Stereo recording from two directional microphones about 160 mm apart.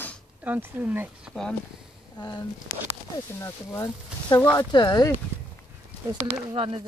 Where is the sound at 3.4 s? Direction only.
20° left (ahead or behind).